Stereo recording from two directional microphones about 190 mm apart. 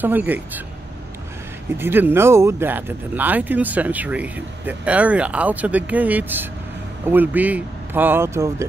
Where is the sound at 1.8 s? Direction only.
10° right (ahead or behind).